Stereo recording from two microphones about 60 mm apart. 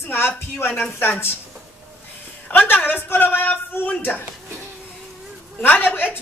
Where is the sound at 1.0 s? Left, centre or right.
Left.